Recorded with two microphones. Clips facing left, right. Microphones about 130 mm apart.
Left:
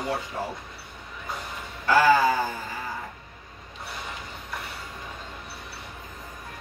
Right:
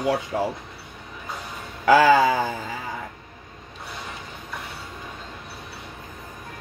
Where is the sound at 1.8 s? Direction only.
90° right.